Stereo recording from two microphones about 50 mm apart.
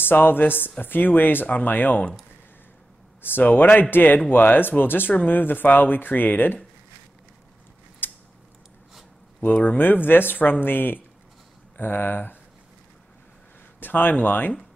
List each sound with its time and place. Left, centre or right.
0.0 s speech: left
3.2 s speech: left
8.0 s a sound: left
9.4 s speech: left
13.7 s speech: left